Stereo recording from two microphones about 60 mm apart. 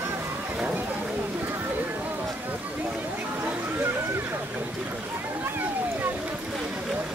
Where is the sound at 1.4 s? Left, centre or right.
Right.